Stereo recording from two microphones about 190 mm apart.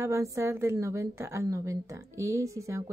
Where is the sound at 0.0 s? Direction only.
15° right (ahead or behind).